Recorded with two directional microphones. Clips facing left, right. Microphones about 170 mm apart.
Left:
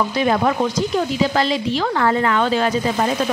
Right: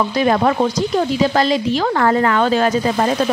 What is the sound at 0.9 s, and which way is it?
Speech, 45° right (ahead or behind).